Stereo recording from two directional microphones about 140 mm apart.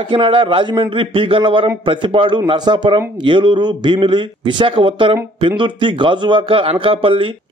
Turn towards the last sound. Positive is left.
turn(degrees=-40)  # may be behind; listen again after turning